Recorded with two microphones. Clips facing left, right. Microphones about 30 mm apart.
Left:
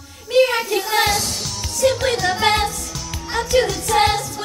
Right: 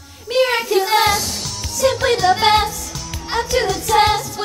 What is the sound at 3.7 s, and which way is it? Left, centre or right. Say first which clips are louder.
Music: right 2 dB; centre.